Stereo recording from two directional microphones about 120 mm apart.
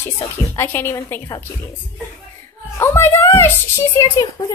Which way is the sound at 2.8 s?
20° left (ahead or behind).